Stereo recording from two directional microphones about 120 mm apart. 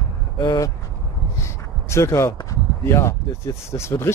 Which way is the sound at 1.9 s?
25° left (ahead or behind).